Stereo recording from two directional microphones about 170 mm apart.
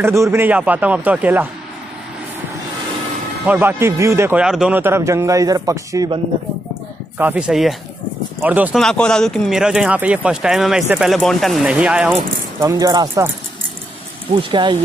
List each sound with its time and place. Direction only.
0.0 s a man's voice: 15° right (ahead or behind)
3.4 s a man's voice: 10° right (ahead or behind)
7.2 s a man's voice: 10° right (ahead or behind)
8.7 s speech: 5° left (ahead or behind)
12.5 s speech: 20° right (ahead or behind)
14.3 s speech: 30° right (ahead or behind)